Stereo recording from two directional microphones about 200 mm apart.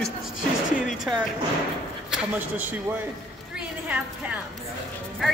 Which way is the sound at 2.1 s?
5° right (ahead or behind).